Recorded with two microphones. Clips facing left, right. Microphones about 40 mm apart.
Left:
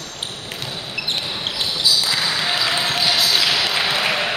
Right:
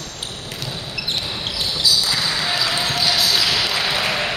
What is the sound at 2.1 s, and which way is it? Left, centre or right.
Basketball bounce, centre.